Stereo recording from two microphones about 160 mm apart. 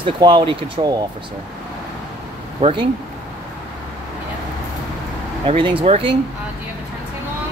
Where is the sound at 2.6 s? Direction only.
45° right (ahead or behind).